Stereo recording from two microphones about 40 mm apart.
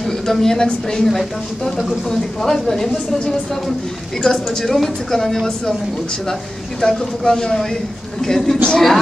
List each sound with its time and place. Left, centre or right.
0.3 s a woman's voice: centre
1.1 s a woman's voice: centre
4.2 s a woman's voice: centre
6.9 s a woman's voice: centre